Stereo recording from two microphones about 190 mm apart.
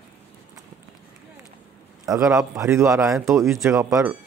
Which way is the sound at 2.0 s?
15° right (ahead or behind).